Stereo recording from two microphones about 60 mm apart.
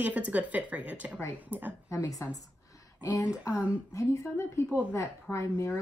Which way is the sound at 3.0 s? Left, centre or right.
Left.